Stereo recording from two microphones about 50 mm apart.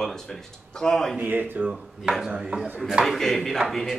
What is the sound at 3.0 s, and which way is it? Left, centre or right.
Speech, centre.